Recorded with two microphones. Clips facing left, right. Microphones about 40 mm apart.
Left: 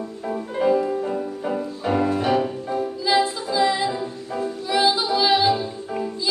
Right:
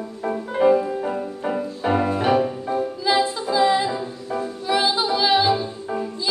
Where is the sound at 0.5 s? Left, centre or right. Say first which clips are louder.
Right 2 dB; centre.